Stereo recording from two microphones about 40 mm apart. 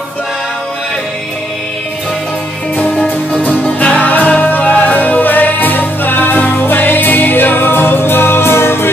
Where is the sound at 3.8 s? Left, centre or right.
Left.